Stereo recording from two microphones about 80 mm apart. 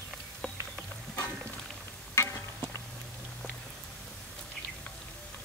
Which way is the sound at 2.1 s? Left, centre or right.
Left.